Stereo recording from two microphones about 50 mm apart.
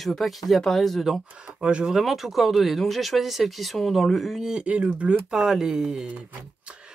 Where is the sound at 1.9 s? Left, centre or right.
Centre; by 5.1 s right.